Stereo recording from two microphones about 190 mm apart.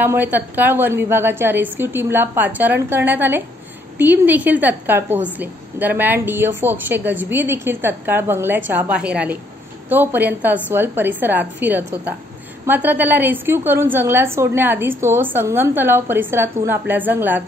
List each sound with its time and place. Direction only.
0.0 s a woman's voice: 10° right (ahead or behind)